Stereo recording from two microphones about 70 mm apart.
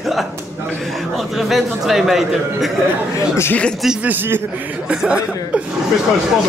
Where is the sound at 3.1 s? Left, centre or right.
Left.